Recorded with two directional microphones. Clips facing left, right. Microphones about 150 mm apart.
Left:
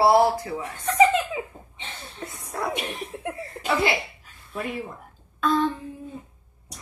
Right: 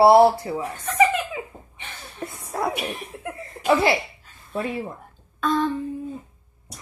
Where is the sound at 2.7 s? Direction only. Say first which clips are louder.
Right 1 dB; 25° left (ahead or behind).